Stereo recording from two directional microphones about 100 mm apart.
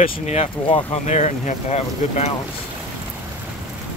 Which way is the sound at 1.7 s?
90° left.